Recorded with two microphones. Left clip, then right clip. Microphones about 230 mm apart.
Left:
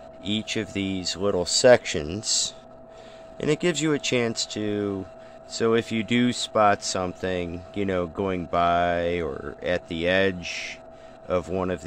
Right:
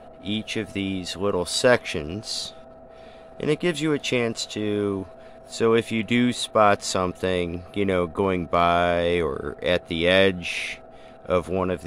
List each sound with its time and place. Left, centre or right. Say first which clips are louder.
0.2 s speech: left 1 dB; centre